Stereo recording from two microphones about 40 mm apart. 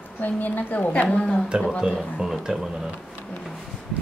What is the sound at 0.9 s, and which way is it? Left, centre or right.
Speech, left.